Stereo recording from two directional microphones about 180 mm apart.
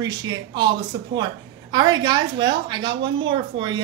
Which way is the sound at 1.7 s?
25° right (ahead or behind).